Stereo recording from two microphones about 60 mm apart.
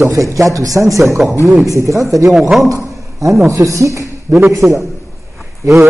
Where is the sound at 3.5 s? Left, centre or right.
Right.